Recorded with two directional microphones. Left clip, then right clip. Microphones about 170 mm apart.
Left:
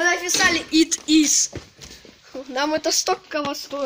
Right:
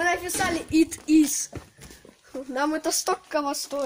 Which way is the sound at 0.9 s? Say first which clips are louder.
Left 3 dB; 45° right (ahead or behind).